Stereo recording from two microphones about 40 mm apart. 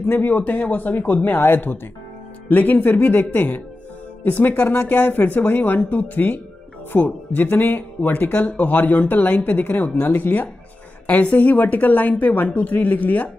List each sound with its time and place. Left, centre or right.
0.1 s speech: left
1.4 s speech: left
2.5 s speech: left